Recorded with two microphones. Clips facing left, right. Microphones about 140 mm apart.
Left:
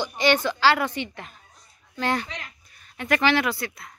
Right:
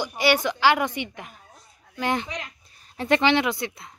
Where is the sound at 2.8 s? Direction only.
30° right (ahead or behind).